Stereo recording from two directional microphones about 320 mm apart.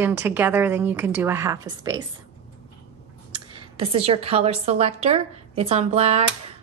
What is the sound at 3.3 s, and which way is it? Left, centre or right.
A woman's voice, centre.